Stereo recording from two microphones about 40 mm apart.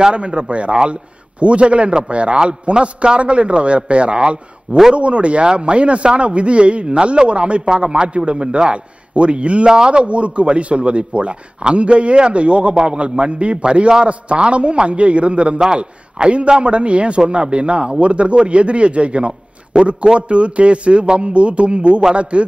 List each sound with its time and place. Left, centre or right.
0.0 s a man's voice: right